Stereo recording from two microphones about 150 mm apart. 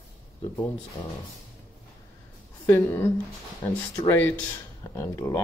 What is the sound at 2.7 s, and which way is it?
Speech, 15° left (ahead or behind).